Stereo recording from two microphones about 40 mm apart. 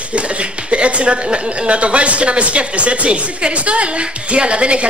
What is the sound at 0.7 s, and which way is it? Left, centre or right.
Speech, right.